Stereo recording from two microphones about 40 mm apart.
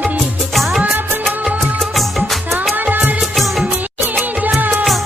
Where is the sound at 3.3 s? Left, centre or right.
Centre.